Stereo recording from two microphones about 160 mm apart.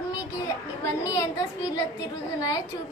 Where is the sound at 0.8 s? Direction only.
20° left (ahead or behind).